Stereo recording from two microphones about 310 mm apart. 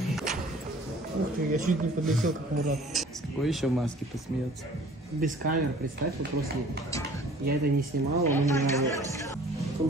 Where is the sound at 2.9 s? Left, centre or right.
Centre.